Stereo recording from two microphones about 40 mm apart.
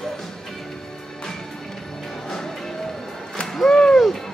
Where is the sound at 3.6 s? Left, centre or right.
Centre.